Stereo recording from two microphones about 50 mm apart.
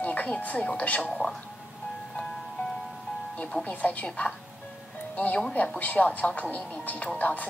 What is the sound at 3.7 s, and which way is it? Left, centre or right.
A woman's voice, left.